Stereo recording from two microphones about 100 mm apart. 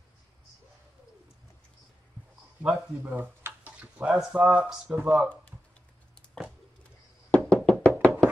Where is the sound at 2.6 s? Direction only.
15° right (ahead or behind).